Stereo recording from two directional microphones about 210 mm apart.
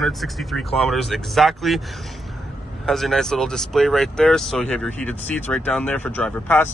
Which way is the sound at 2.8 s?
Centre (ahead or behind).